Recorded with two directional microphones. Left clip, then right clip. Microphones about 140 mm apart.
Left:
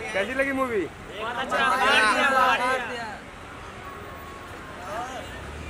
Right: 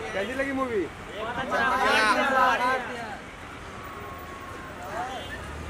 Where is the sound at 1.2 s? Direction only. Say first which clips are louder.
Left 2 dB; 15° left (ahead or behind).